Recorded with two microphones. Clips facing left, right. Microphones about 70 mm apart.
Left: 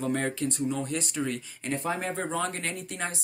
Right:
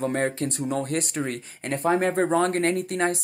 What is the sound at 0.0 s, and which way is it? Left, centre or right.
Speech, right.